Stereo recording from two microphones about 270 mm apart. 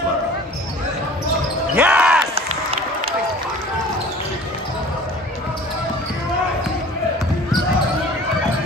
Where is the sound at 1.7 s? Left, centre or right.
Centre.